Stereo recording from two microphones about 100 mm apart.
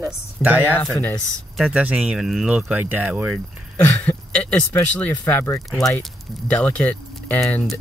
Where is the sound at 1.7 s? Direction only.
10° right (ahead or behind).